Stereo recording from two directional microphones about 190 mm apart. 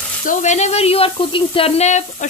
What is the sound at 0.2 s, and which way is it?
Speech, 40° left (ahead or behind).